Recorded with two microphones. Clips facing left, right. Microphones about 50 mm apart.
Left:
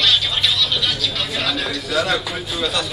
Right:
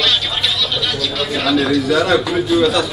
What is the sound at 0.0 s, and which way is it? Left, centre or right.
Speech, centre.